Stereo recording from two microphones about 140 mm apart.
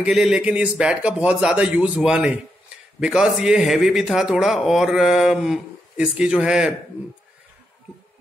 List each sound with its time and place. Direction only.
0.0 s a man's voice: 5° right (ahead or behind)